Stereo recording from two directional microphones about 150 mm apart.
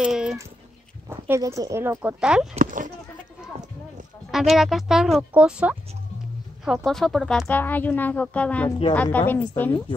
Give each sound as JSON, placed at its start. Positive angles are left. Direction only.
{"t": 0.0, "sound": "dog", "side_deg": -5}
{"t": 1.0, "sound": "speech", "side_deg": -15}
{"t": 2.6, "sound": "speech", "side_deg": -60}
{"t": 4.3, "sound": "speech", "side_deg": 0}
{"t": 7.4, "sound": "a woman's voice", "side_deg": 10}